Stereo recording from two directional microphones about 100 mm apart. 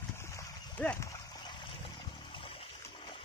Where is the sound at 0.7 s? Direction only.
15° left (ahead or behind).